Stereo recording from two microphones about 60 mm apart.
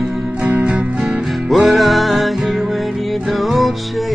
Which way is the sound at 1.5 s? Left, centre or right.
Centre.